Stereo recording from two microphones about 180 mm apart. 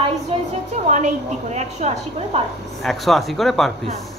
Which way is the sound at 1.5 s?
40° right (ahead or behind).